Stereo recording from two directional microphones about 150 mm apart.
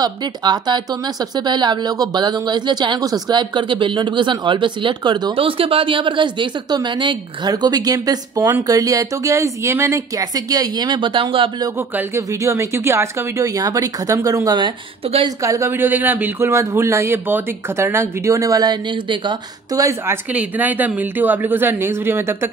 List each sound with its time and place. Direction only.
0.0 s speech: 30° right (ahead or behind)
11.9 s speech: 10° right (ahead or behind)